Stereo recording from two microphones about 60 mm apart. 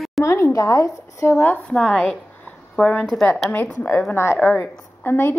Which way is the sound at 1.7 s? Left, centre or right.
Centre.